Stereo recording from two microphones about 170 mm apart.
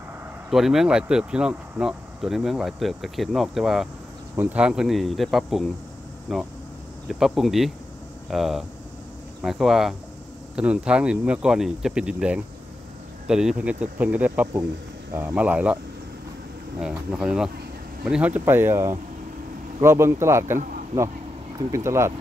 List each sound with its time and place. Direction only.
0.5 s speech: centre (ahead or behind)
16.8 s speech: 5° right (ahead or behind)